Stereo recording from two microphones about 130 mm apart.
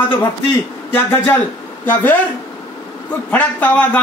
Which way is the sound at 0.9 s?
20° left (ahead or behind).